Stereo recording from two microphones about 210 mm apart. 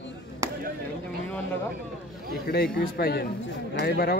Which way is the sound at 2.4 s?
50° left (ahead or behind).